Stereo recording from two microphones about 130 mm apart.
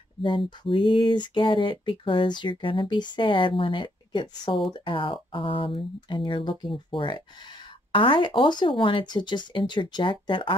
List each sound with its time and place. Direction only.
0.2 s speech: 40° left (ahead or behind)